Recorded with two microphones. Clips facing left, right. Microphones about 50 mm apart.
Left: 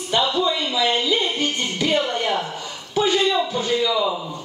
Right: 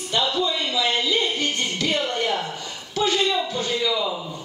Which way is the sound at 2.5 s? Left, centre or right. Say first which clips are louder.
Left 3 dB; centre.